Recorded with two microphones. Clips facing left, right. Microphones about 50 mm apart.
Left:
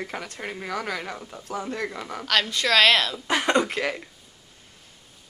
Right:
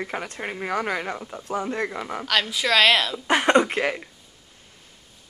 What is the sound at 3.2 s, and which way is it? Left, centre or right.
Speech, right.